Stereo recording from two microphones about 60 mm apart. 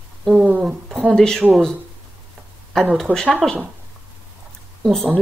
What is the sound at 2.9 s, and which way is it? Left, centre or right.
Speech, centre.